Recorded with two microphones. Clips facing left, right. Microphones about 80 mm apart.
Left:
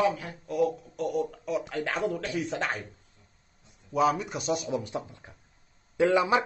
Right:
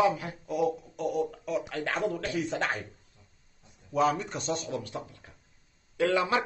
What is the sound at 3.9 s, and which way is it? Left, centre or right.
A man's voice, centre.